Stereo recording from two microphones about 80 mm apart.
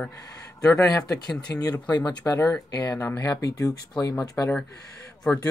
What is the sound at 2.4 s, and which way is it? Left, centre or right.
Speech, left.